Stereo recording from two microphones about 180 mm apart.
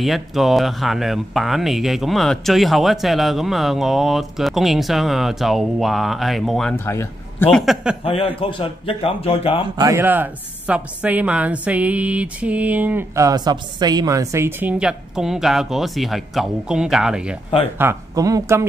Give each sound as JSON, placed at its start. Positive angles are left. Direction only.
{"t": 0.0, "sound": "speech", "side_deg": 0}
{"t": 6.9, "sound": "a man's voice", "side_deg": 15}
{"t": 7.5, "sound": "speech", "side_deg": 0}
{"t": 8.0, "sound": "speech", "side_deg": 30}
{"t": 9.8, "sound": "speech", "side_deg": -15}
{"t": 17.7, "sound": "speech", "side_deg": -15}